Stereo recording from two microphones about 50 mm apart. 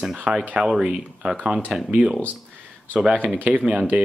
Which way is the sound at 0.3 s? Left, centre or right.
Right.